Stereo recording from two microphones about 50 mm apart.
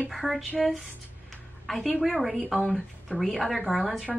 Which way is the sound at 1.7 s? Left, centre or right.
Centre.